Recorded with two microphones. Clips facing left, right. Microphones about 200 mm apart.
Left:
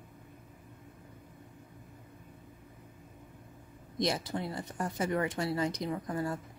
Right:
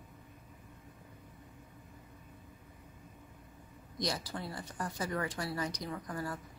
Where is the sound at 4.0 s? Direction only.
25° left (ahead or behind).